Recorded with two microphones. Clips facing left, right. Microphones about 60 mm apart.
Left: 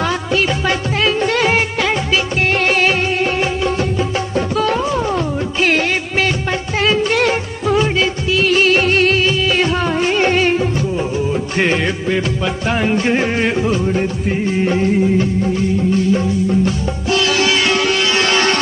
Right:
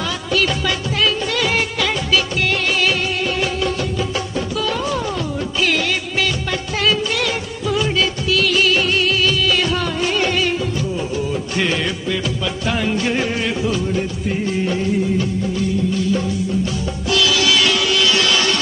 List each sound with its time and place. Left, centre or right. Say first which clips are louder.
0.3 s music: even; left
4.6 s music: left 4 dB; left
6.8 s music of bollywood: left 5 dB; left
11.5 s music: left 4 dB; left
16.6 s sitar: left 4 dB; left